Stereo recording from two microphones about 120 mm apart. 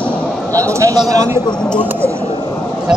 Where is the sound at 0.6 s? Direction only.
25° right (ahead or behind).